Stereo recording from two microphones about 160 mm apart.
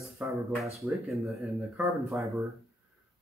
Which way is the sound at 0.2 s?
5° right (ahead or behind).